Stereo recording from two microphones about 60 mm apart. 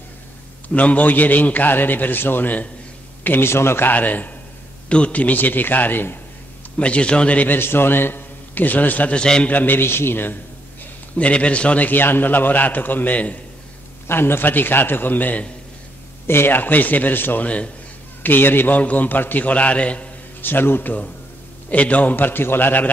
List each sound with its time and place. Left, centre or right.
0.7 s a man's voice: left
3.3 s a man's voice: left
3.9 s a man's voice: left
4.8 s a man's voice: centre
6.8 s a man's voice: centre
7.5 s a man's voice: left
9.2 s a man's voice: centre
9.5 s a man's voice: left
11.1 s a man's voice: left
14.0 s a man's voice: left
16.3 s a man's voice: left
20.4 s a man's voice: left
21.6 s a man's voice: left